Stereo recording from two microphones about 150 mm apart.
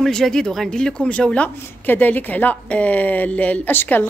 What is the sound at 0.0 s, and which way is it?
A woman's voice, 5° left (ahead or behind).